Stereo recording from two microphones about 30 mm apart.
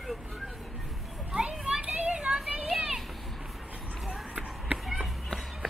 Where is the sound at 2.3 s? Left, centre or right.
Right.